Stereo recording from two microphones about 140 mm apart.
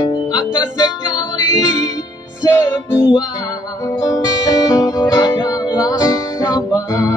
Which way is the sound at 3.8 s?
25° left (ahead or behind).